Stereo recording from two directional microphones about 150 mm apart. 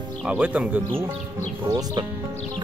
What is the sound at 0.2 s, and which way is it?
Speech, 10° right (ahead or behind).